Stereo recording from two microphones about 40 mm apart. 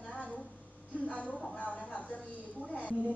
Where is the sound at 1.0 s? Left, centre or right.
Left.